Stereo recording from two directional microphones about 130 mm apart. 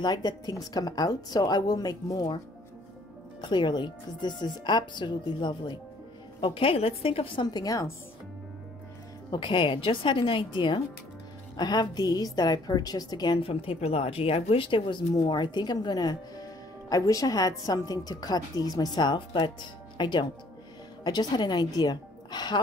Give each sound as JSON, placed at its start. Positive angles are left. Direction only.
{"t": 0.0, "sound": "a woman's voice", "side_deg": 35}
{"t": 3.3, "sound": "speech", "side_deg": 35}
{"t": 9.3, "sound": "speech", "side_deg": 40}
{"t": 13.4, "sound": "a woman's voice", "side_deg": 45}